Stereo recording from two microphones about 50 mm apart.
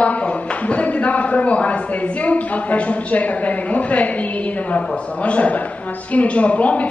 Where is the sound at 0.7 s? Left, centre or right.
Left.